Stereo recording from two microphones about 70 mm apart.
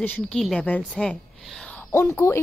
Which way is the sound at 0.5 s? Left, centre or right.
Centre.